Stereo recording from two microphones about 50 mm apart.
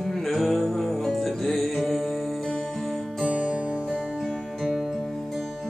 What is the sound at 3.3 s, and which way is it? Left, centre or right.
Music, right.